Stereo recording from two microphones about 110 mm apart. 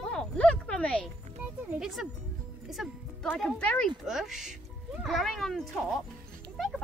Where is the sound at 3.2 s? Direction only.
5° left (ahead or behind).